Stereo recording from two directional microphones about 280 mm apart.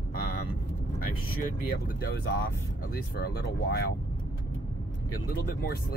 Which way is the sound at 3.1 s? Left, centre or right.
Left.